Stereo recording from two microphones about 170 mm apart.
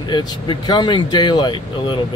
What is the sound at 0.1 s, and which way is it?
Speech, 25° left (ahead or behind).